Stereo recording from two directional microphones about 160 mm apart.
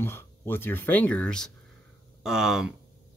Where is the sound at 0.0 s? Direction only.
15° left (ahead or behind).